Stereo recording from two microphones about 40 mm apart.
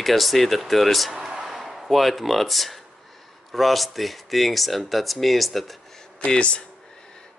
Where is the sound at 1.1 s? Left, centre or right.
Centre.